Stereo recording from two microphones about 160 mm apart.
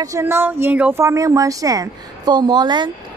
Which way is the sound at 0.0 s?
15° right (ahead or behind).